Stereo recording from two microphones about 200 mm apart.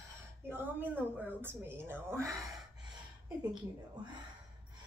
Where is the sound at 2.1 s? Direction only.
15° right (ahead or behind).